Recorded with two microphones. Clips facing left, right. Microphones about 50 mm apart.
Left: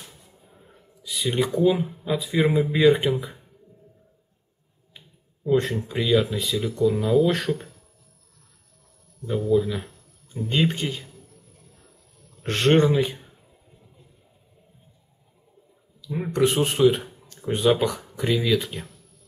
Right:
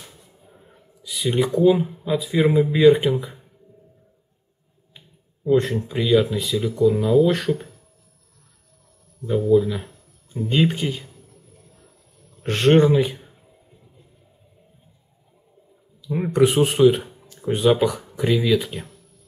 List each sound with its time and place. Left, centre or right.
1.0 s speech: centre
4.9 s speech: centre
9.5 s speech: centre
12.4 s speech: centre
16.0 s a sound: centre
16.4 s speech: centre